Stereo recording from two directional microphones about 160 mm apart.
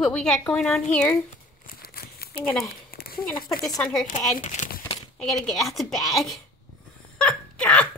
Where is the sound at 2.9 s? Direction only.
70° left (ahead or behind).